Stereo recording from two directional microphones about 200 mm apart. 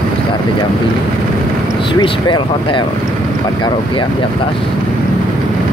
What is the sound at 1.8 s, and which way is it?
Speech, 20° left (ahead or behind).